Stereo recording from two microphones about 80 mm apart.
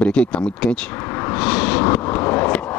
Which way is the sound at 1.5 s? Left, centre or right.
Centre.